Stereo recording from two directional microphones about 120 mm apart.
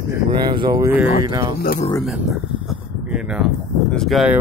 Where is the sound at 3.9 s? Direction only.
Centre (ahead or behind).